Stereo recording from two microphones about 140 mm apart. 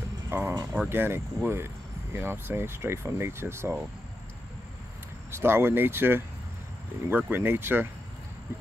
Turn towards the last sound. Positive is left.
turn(degrees=-15)  # may be behind; listen again after turning